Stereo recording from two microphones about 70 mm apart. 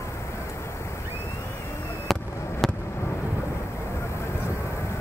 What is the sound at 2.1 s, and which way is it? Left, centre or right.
Fireworks, centre.